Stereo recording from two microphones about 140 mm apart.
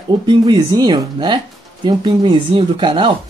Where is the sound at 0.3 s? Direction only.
30° right (ahead or behind).